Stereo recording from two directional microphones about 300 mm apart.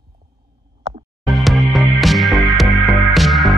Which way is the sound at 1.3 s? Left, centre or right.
Centre.